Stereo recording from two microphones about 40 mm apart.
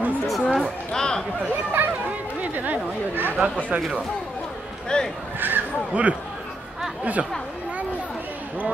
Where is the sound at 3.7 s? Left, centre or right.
Right.